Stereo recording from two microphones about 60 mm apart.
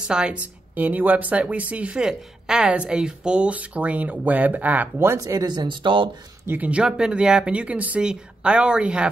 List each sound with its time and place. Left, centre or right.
0.1 s speech: centre
0.7 s speech: right
5.2 s speech: right
6.4 s speech: right
6.7 s speech: centre